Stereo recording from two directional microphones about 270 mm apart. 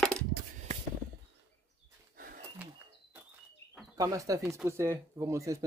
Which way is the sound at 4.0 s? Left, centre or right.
Centre.